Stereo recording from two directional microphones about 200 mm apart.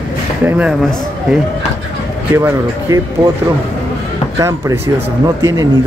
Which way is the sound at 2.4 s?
15° right (ahead or behind).